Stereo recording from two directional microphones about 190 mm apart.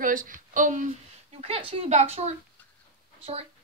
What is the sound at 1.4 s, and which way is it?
Speech, 30° right (ahead or behind).